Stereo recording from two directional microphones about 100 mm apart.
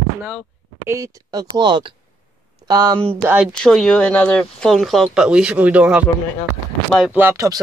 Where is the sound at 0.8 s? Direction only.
30° right (ahead or behind); by 1.9 s 45° right (ahead or behind).